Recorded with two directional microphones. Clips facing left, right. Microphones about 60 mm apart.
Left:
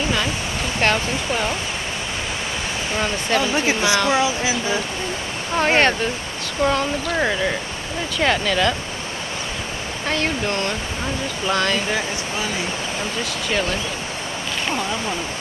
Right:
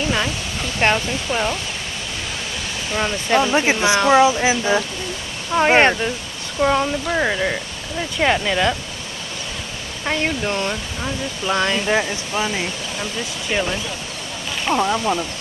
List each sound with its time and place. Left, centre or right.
0.8 s speech: right
3.0 s speech: right
10.0 s speech: centre
13.5 s speech: centre
14.7 s speech: right